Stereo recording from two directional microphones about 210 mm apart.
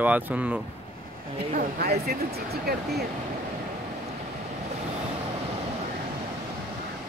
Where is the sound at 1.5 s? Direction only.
45° right (ahead or behind).